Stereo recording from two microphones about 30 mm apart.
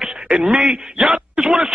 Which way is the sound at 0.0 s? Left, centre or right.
Right.